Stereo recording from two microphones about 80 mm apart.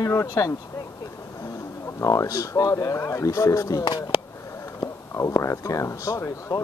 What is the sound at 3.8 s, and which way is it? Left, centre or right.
Speech, left.